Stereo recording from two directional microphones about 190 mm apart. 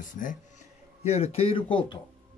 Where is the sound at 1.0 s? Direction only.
30° left (ahead or behind).